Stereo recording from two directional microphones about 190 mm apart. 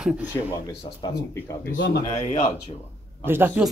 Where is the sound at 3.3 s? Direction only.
10° right (ahead or behind).